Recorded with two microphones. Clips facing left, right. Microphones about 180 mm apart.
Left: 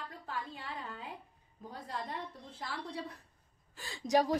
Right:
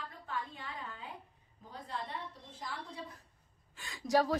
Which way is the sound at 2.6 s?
65° left (ahead or behind).